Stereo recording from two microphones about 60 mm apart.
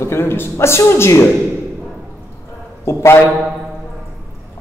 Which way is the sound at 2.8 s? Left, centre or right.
Left.